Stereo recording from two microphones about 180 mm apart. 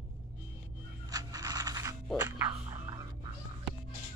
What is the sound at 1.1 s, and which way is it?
Music, 20° right (ahead or behind).